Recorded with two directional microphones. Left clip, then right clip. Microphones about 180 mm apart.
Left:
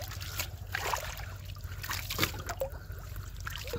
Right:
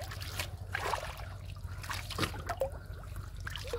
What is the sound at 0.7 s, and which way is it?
Boat, 15° left (ahead or behind).